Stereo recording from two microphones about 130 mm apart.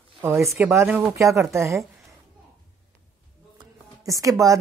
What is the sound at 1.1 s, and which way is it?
Speech, 20° right (ahead or behind).